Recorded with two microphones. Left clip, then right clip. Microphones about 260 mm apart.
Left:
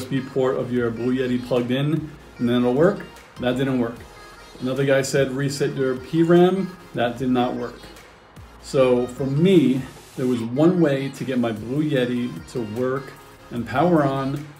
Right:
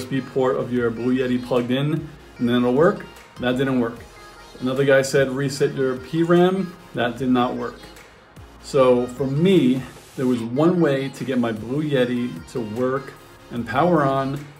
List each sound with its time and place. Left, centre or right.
0.0 s speech: centre
2.8 s speech: centre
8.6 s speech: centre
9.0 s speech: centre
9.4 s speech: centre